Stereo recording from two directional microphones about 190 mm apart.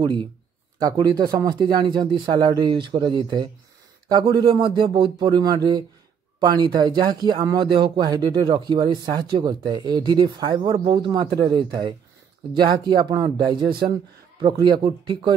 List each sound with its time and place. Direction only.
0.0 s speech: 25° right (ahead or behind)